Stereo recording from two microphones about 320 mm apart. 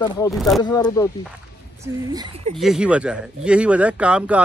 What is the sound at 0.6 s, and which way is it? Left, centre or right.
Speech, centre.